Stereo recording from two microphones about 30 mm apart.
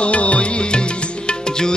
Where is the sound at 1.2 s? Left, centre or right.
Left.